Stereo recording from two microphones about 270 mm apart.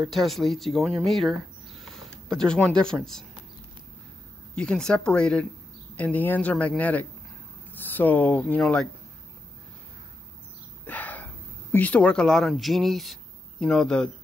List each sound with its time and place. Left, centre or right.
0.0 s speech: centre
4.6 s speech: centre
10.9 s a sound: centre
11.7 s speech: centre